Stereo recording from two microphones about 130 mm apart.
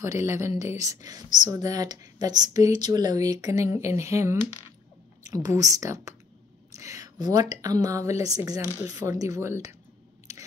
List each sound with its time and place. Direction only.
0.0 s speech: 20° right (ahead or behind)